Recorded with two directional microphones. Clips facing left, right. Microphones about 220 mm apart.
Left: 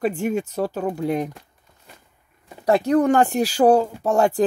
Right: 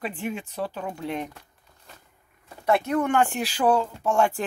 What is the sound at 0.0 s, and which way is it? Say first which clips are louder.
Speech: left 9 dB; 45° left (ahead or behind).